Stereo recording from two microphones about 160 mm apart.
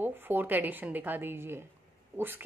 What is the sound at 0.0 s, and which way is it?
A woman's voice, 10° right (ahead or behind).